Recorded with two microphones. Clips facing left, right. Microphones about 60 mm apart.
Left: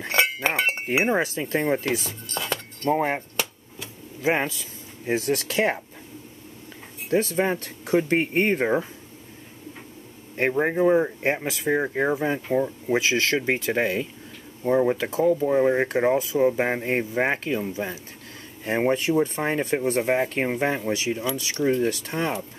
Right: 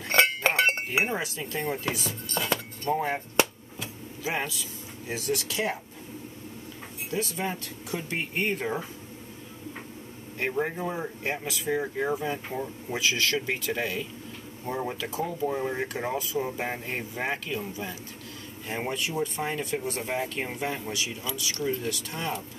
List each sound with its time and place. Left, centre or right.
0.1 s chink: centre
1.1 s speech: left
2.2 s cutlery: centre
2.9 s speech: left
4.2 s speech: left
7.1 s speech: left
10.6 s speech: left
18.7 s speech: left